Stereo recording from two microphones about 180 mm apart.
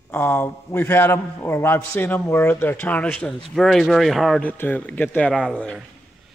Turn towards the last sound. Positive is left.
turn(degrees=5)  # may be behind; listen again after turning